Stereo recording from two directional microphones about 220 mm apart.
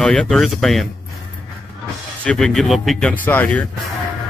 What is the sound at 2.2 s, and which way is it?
Speech, 5° left (ahead or behind).